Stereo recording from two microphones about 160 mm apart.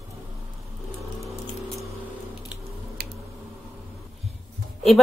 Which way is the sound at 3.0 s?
85° right.